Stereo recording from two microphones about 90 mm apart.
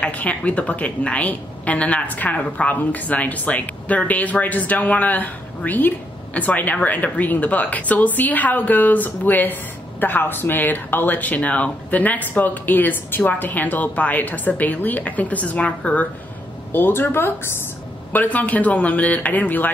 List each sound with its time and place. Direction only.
0.0 s a woman's voice: 15° left (ahead or behind)